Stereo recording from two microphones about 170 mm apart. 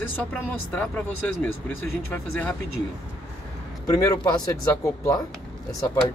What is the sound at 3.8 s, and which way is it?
Speech, 20° left (ahead or behind).